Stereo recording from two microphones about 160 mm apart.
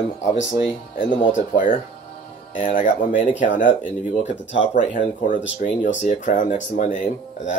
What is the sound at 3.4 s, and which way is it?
Speech, 55° left (ahead or behind).